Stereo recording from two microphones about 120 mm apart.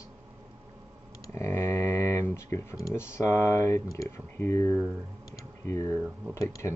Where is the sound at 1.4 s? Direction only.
20° left (ahead or behind).